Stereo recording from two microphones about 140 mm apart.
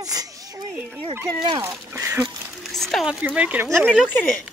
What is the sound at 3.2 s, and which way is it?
Speech, 10° right (ahead or behind).